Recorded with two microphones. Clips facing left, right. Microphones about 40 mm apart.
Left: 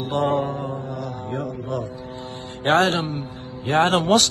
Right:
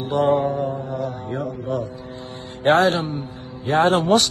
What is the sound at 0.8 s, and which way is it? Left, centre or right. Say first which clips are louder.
Mantra: right 3 dB; right.